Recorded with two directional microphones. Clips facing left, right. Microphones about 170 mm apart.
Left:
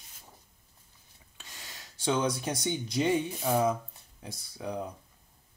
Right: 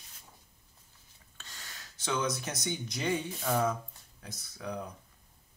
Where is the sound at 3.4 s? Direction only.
15° left (ahead or behind).